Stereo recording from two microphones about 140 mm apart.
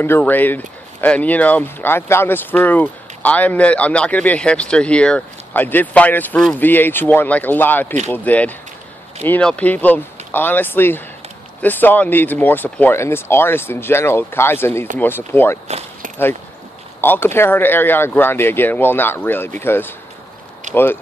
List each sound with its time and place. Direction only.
0.0 s speech: 15° left (ahead or behind)
17.0 s speech: 15° left (ahead or behind)